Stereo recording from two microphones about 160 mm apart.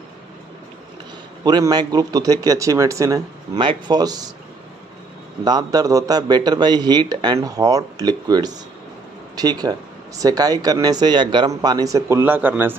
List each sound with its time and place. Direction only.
1.4 s speech: 25° right (ahead or behind)
5.4 s speech: 25° right (ahead or behind)